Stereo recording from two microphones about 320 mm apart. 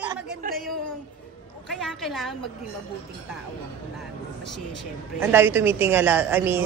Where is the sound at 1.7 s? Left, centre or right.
Centre.